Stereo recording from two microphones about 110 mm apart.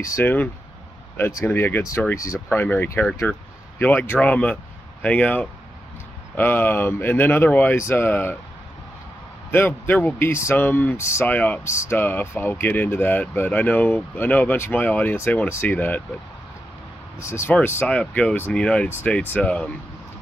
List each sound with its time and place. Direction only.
0.0 s speech: 25° left (ahead or behind)
9.5 s speech: 20° left (ahead or behind)
17.2 s speech: 25° left (ahead or behind)